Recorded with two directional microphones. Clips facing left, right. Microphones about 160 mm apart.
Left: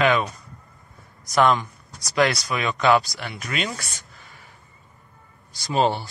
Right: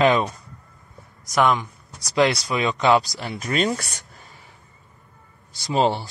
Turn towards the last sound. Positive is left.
turn(degrees=-25)  # may be behind; listen again after turning